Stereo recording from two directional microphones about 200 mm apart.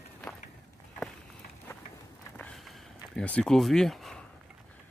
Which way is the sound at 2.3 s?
Centre (ahead or behind).